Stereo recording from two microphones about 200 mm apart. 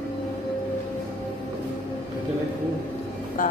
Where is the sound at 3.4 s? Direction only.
40° left (ahead or behind).